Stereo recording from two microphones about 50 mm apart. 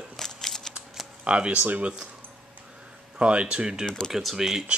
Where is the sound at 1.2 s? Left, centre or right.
Right.